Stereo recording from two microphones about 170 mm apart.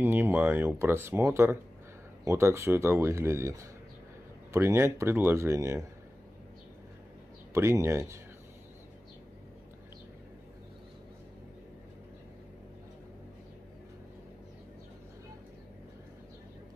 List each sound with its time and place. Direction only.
0.0 s speech: 15° right (ahead or behind)
7.5 s speech: 15° right (ahead or behind)